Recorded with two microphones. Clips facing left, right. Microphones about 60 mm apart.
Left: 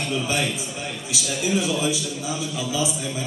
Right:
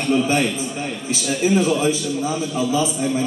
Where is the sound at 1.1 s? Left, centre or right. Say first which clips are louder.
Right 6 dB; right.